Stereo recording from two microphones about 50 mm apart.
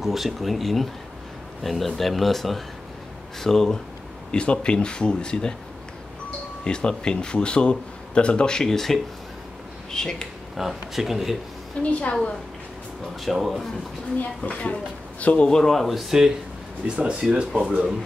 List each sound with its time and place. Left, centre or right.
0.0 s speech: centre
4.3 s speech: centre
6.6 s speech: centre
10.6 s speech: centre
11.8 s speech: left
13.2 s speech: centre
14.4 s speech: left
15.4 s speech: centre
16.8 s speech: centre